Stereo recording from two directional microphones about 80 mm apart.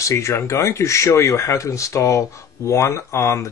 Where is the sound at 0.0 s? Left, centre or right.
Left.